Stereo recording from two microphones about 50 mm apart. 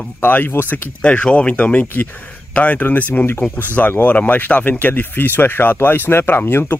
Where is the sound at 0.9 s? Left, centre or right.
Left.